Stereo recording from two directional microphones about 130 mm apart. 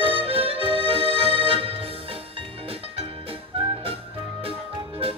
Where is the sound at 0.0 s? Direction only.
45° right (ahead or behind).